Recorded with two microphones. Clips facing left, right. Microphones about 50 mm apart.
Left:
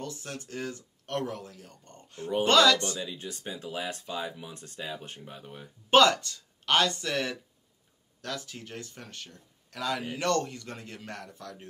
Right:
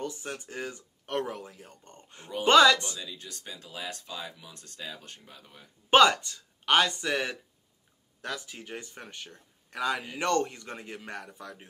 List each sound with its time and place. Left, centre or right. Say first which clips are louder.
0.0 s speech: right 2 dB; centre
3.0 s speech: left 5 dB; left
5.9 s speech: right 1 dB; right